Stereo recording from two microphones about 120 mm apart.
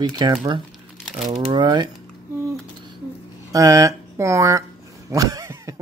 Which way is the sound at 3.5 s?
30° right (ahead or behind).